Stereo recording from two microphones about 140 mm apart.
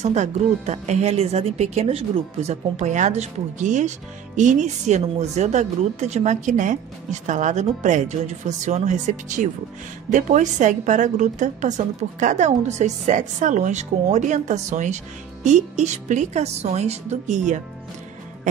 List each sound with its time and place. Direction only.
0.0 s a woman's voice: 55° right (ahead or behind)